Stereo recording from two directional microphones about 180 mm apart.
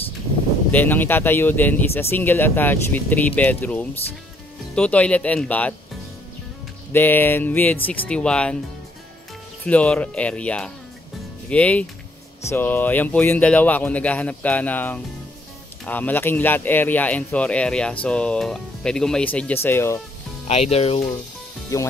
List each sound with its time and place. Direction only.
0.7 s speech: 10° left (ahead or behind)
6.9 s speech: 10° left (ahead or behind)
9.7 s speech: 5° left (ahead or behind)
20.4 s speech: 35° left (ahead or behind)
21.7 s speech: 15° left (ahead or behind)